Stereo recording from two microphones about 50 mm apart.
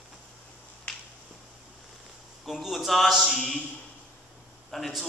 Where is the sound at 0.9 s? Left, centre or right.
Left.